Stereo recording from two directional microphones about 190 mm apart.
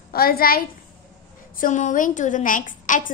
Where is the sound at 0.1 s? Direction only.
50° left (ahead or behind).